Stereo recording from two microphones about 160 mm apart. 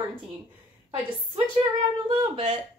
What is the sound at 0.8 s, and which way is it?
Speech, 35° right (ahead or behind).